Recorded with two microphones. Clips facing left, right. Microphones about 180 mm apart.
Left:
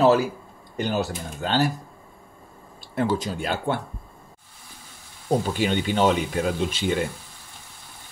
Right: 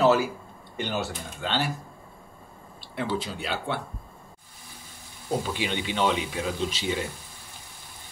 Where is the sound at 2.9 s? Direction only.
45° left (ahead or behind).